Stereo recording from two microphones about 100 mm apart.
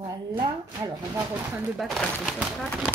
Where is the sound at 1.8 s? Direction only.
Centre (ahead or behind).